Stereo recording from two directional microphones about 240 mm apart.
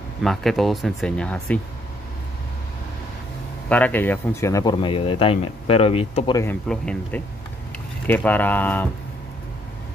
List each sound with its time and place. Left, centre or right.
0.2 s speech: centre
3.6 s speech: centre; by 6.4 s left
6.4 s speech: centre